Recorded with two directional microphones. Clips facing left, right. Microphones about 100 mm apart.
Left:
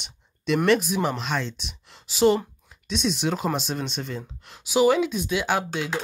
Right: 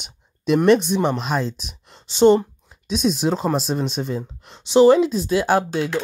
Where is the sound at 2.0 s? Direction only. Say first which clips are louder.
Right 6 dB; 30° right (ahead or behind).